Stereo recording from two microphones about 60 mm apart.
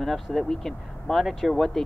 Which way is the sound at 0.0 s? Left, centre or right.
Centre.